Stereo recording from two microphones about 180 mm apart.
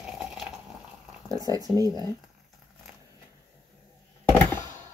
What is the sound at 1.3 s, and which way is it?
Speech, 20° right (ahead or behind).